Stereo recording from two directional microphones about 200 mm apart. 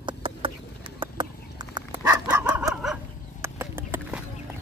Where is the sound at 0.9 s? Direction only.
25° right (ahead or behind).